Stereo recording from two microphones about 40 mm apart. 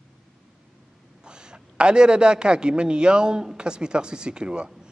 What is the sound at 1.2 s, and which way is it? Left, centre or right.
A man's voice, right.